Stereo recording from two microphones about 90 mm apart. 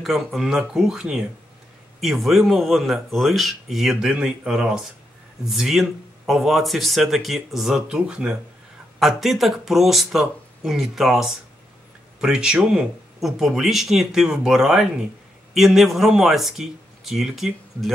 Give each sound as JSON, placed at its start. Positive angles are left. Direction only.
{"t": 0.0, "sound": "speech", "side_deg": 0}